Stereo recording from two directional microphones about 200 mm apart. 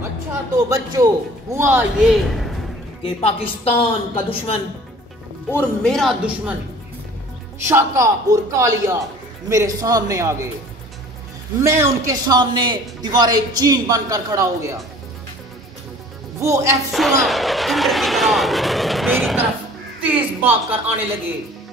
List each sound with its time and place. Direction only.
0.7 s a man's voice: 15° right (ahead or behind); by 2.5 s centre (ahead or behind)
3.0 s a woman's voice: 30° left (ahead or behind)
5.5 s speech: 5° left (ahead or behind)
7.6 s a man's voice: 15° right (ahead or behind)
11.6 s a man's voice: 15° right (ahead or behind)
16.3 s a man's voice: 15° right (ahead or behind)
16.9 s a man's voice: centre (ahead or behind)